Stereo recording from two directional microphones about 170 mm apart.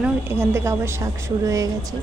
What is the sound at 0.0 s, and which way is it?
A woman's voice, 15° right (ahead or behind).